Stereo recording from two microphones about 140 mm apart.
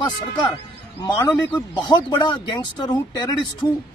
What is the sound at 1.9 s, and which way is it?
Speech, 35° left (ahead or behind).